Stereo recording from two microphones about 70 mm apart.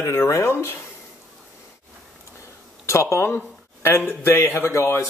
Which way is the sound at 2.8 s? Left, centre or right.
Left.